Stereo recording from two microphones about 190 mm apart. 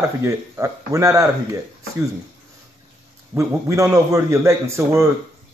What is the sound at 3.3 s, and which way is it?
Speech, 15° right (ahead or behind).